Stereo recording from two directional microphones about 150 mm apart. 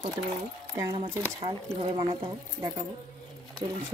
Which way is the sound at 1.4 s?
40° right (ahead or behind).